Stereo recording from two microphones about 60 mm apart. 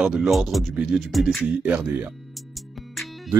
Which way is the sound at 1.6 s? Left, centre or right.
Centre.